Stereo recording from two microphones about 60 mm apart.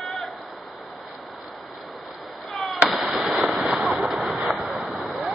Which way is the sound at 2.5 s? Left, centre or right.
Centre.